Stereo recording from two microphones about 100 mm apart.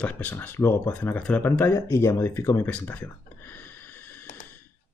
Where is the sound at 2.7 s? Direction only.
20° left (ahead or behind).